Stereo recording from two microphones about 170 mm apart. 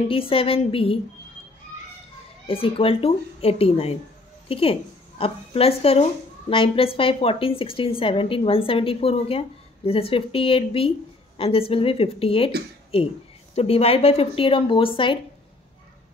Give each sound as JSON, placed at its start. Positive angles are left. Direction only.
{"t": 0.1, "sound": "speech", "side_deg": 35}
{"t": 2.4, "sound": "speech", "side_deg": 35}
{"t": 13.6, "sound": "speech", "side_deg": 35}